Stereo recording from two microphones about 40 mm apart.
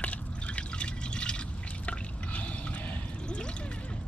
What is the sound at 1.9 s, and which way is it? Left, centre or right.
Drip, left.